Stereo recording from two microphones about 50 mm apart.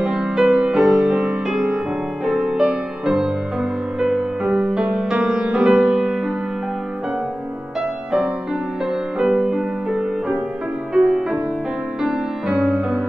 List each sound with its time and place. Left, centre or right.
0.0 s music: centre
9.2 s music: centre